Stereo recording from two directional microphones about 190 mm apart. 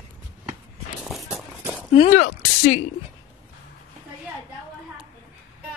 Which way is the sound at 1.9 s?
35° left (ahead or behind).